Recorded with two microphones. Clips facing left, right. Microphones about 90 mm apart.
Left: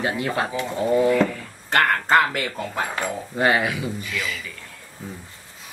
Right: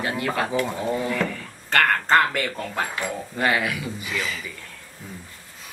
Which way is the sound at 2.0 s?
10° left (ahead or behind).